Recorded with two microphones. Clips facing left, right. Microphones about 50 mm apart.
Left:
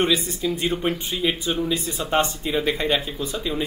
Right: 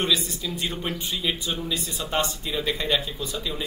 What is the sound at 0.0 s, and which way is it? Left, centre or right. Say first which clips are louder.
Speech: left 4 dB; left.